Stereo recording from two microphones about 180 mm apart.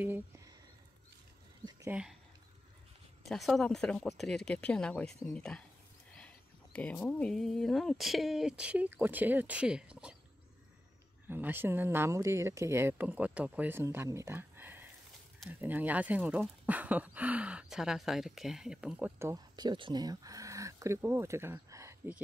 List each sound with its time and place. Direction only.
1.7 s a sound: 20° right (ahead or behind)
3.3 s speech: centre (ahead or behind)
11.2 s speech: 10° right (ahead or behind)